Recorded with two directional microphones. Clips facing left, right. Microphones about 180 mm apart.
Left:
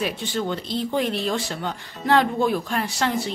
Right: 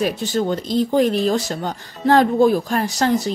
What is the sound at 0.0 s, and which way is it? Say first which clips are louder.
Speech: right 6 dB; 40° right (ahead or behind).